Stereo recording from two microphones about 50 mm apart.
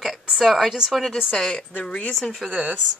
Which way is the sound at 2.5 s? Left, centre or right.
Right.